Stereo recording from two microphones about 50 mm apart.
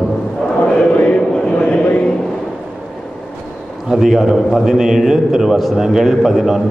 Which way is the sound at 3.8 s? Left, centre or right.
Centre.